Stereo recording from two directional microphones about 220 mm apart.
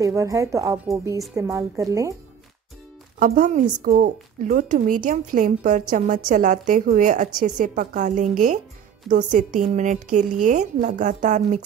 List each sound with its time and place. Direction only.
0.0 s a woman's voice: 15° right (ahead or behind)
3.2 s a woman's voice: 40° right (ahead or behind)